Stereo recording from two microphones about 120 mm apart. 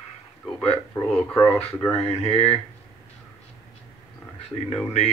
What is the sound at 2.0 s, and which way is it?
Speech, 55° left (ahead or behind).